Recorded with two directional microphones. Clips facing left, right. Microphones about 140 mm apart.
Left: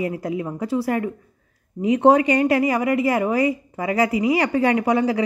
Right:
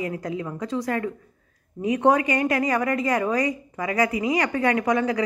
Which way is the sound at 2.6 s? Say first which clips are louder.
Left 4 dB; 20° left (ahead or behind).